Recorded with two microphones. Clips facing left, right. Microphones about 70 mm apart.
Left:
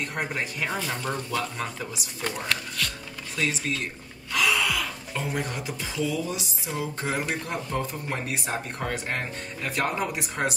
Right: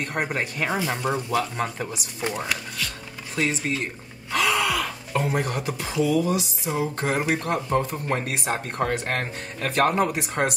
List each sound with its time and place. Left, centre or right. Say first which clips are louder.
0.0 s speech: right 3 dB; right
0.7 s speech: right 7 dB; centre
2.2 s speech: right 2 dB; centre
3.3 s speech: right 3 dB; right
4.3 s gasp: right 2 dB; right
6.0 s speech: right 9 dB; right